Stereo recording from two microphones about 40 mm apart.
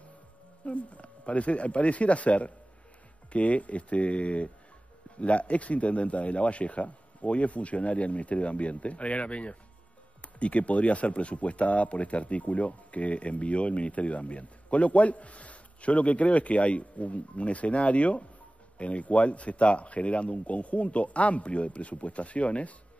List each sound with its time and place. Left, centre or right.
0.7 s speech: left